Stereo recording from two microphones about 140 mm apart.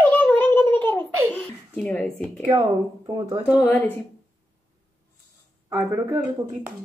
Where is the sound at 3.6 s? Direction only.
15° left (ahead or behind).